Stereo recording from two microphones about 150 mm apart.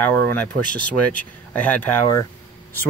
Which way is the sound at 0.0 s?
10° left (ahead or behind).